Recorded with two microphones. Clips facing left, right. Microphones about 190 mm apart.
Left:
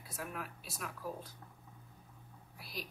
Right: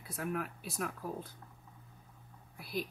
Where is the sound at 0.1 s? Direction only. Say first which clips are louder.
Right 7 dB; 55° right (ahead or behind).